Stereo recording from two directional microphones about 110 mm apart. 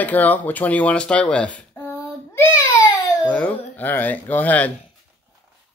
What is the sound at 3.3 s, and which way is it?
Speech, 15° left (ahead or behind).